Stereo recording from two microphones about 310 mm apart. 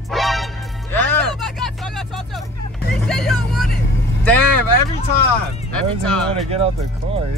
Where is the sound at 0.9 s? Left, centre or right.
Centre.